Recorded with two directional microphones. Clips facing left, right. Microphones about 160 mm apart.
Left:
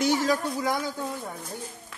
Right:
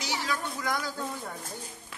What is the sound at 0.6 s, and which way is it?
Speech, 25° left (ahead or behind).